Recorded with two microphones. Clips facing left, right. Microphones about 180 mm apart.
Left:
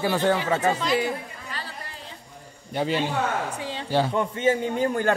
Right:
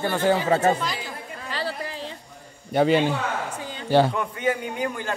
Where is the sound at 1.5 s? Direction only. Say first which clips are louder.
Right 12 dB; 90° right.